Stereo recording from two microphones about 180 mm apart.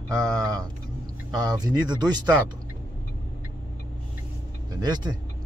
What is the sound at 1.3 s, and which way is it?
Speech, 20° right (ahead or behind).